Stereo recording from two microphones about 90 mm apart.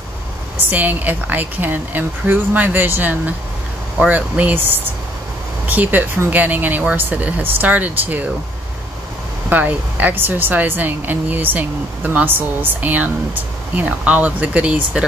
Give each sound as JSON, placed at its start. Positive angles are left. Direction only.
{"t": 0.6, "sound": "speech", "side_deg": -20}
{"t": 9.5, "sound": "speech", "side_deg": -20}